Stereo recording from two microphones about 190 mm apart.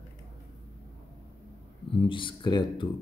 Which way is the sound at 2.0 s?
25° left (ahead or behind).